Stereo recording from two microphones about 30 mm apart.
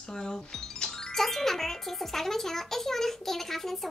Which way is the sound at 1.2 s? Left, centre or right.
Centre.